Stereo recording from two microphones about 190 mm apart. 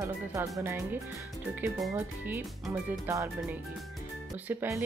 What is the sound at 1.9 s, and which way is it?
Speech, 10° right (ahead or behind).